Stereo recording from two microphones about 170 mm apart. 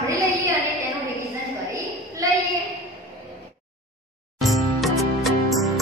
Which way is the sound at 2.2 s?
20° right (ahead or behind).